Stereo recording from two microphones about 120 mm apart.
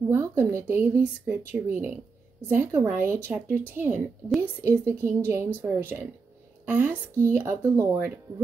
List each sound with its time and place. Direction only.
0.1 s speech: 20° right (ahead or behind)